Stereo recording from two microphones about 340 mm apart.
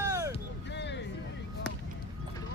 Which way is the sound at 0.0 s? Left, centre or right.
Centre.